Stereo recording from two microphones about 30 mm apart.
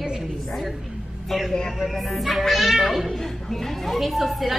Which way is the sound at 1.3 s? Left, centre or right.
Centre.